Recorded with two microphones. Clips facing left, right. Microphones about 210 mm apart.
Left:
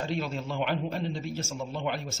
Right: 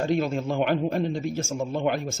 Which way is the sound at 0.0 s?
50° right (ahead or behind).